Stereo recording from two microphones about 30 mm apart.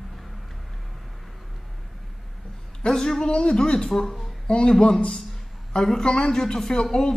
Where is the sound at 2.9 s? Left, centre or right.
Centre.